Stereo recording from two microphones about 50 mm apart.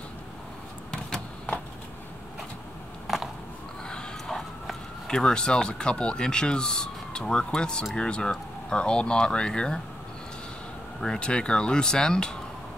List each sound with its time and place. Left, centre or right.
5.0 s speech: centre
11.0 s speech: centre